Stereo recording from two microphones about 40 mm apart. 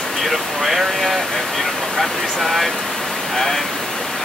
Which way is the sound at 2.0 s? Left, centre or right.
Centre.